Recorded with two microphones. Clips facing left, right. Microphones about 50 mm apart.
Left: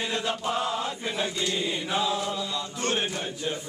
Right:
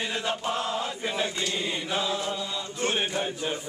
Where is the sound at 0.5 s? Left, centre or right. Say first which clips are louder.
Left 1 dB; centre.